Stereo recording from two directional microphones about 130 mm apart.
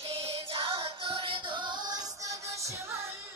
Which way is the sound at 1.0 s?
40° right (ahead or behind).